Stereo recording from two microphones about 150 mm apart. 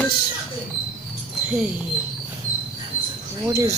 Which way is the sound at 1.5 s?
10° right (ahead or behind).